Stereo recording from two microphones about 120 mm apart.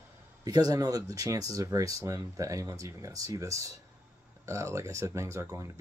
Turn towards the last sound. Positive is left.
turn(degrees=-25)  # may be behind; listen again after turning